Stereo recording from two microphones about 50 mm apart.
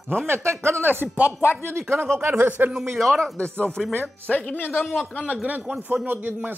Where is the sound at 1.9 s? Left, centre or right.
Right.